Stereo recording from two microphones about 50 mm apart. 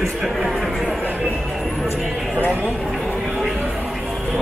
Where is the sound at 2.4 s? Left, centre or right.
Right.